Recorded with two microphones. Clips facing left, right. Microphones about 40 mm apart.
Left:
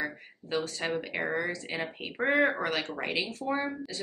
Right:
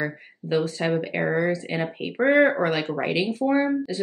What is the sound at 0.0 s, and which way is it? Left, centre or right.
A woman's voice, centre.